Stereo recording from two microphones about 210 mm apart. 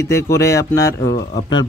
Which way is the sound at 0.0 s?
15° left (ahead or behind).